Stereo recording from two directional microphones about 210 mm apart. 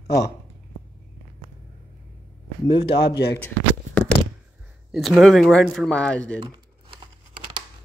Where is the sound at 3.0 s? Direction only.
50° left (ahead or behind).